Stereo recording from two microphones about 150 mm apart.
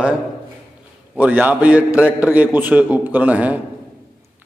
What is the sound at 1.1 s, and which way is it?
A man's voice, 10° right (ahead or behind).